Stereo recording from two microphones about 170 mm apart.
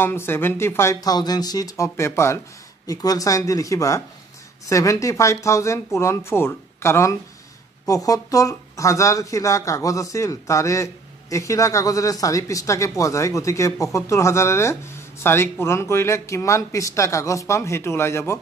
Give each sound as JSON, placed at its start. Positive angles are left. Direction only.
{"t": 0.0, "sound": "speech", "side_deg": 15}